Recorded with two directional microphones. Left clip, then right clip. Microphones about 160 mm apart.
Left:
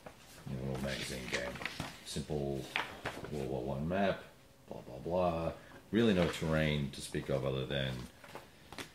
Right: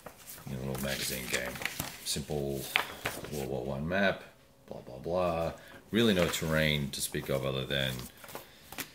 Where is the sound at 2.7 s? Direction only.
25° right (ahead or behind).